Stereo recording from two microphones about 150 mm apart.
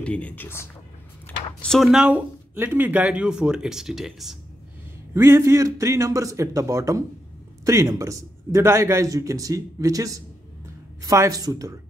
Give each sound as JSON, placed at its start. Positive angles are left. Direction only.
{"t": 0.0, "sound": "speech", "side_deg": 10}
{"t": 5.1, "sound": "a man's voice", "side_deg": -15}